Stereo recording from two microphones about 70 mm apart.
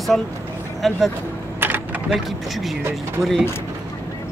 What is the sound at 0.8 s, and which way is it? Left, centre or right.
Speech, centre.